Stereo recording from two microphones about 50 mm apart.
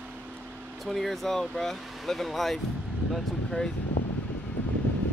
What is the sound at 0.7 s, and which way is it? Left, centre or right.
Speech, centre.